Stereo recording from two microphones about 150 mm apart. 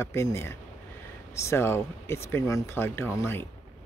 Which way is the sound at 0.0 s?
20° left (ahead or behind).